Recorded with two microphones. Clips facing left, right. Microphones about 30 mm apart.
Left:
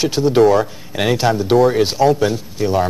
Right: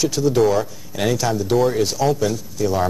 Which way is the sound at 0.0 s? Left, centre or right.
Left.